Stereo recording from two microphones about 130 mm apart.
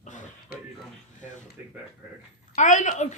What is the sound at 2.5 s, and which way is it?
Speech, 65° left (ahead or behind).